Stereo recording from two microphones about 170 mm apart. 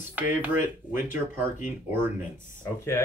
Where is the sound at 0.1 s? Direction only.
10° right (ahead or behind).